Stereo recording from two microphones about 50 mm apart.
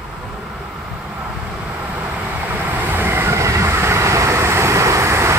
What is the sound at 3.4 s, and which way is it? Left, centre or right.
Vehicle, right.